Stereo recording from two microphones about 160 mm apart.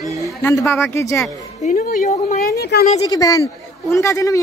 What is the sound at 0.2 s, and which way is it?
A woman's voice, 15° left (ahead or behind).